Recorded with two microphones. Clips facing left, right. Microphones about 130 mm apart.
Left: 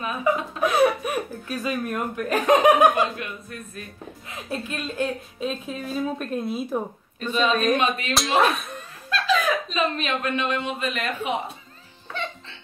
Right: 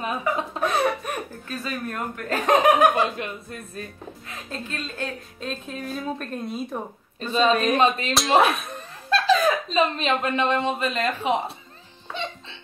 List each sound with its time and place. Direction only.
0.7 s speech: 5° left (ahead or behind)
3.2 s a woman's voice: 30° right (ahead or behind)
4.5 s speech: 15° left (ahead or behind)
7.2 s a woman's voice: 30° right (ahead or behind)
8.1 s speech: centre (ahead or behind)
9.1 s speech: 35° right (ahead or behind)
12.1 s music: 20° right (ahead or behind)